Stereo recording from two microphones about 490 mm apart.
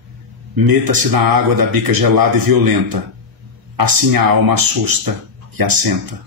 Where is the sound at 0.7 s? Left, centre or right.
Right.